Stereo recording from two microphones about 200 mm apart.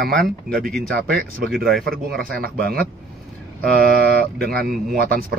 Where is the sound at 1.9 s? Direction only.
50° right (ahead or behind).